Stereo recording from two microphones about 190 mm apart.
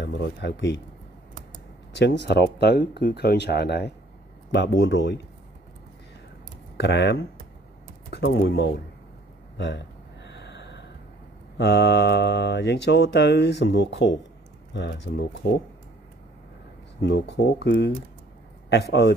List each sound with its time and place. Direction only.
0.0 s speech: 65° left (ahead or behind)
2.0 s speech: 65° left (ahead or behind)
6.8 s speech: 65° left (ahead or behind)
9.6 s gasp: 65° left (ahead or behind)
11.5 s speech: 60° left (ahead or behind)
17.0 s speech: 65° left (ahead or behind)